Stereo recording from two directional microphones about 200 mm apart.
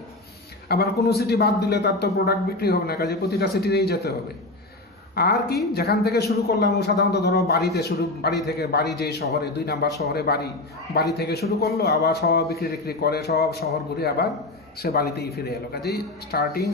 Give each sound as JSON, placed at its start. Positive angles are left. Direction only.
{"t": 0.7, "sound": "a man's voice", "side_deg": 55}
{"t": 5.1, "sound": "a man's voice", "side_deg": 50}